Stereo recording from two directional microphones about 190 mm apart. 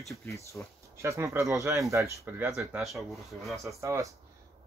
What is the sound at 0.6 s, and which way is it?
Speech, 10° left (ahead or behind).